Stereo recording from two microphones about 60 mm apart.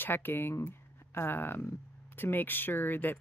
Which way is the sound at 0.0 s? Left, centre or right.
Left.